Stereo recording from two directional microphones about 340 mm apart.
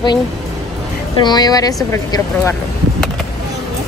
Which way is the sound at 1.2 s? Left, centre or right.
Centre.